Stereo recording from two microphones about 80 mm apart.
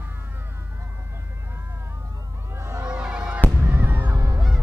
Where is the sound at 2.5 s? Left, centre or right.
Right.